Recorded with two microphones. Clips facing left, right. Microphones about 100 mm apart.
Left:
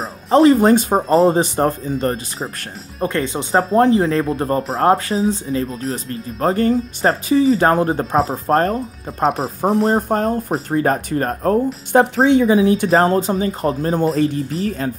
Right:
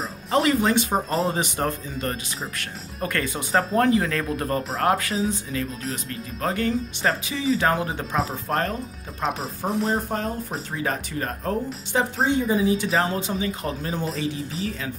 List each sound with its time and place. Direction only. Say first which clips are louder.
0.3 s speech: left 10 dB; 35° left (ahead or behind)
3.0 s speech: left 7 dB; 25° left (ahead or behind); by 8.7 s 40° left (ahead or behind)
9.8 s speech: left 8 dB; 45° left (ahead or behind)
12.3 s speech: left 8 dB; 85° left; by 14.9 s 45° left (ahead or behind)